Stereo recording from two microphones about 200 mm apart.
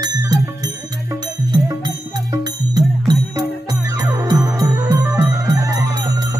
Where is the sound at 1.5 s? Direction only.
20° right (ahead or behind).